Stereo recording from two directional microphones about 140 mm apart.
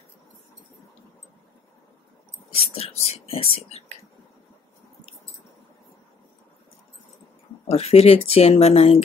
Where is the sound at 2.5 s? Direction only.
45° left (ahead or behind).